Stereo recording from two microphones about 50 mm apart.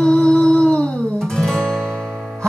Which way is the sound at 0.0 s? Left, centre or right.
Centre.